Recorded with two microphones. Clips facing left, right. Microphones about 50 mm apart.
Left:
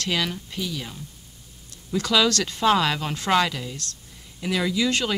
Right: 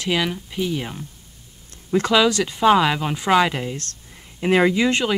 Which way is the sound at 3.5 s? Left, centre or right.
Right.